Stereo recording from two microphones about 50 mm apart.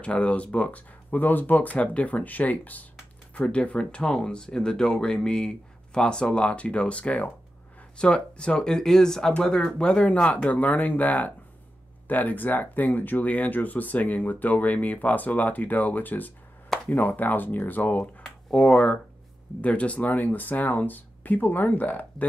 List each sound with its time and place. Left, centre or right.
0.0 s speech: left
16.6 s a sound: centre
16.9 s speech: left
18.5 s speech: centre
19.6 s speech: left